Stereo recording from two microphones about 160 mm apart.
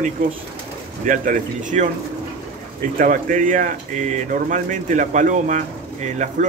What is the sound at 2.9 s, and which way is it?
Speech, 55° right (ahead or behind).